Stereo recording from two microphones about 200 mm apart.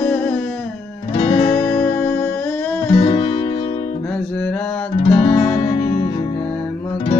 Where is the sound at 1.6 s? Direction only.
5° left (ahead or behind).